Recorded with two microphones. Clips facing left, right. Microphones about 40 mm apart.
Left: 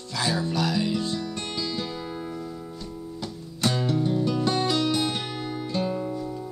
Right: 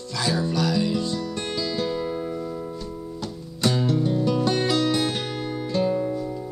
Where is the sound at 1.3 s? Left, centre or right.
Centre.